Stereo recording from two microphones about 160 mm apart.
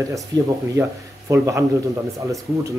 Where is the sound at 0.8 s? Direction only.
20° right (ahead or behind).